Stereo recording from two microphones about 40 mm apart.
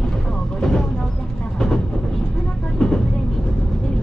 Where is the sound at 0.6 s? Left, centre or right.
Centre.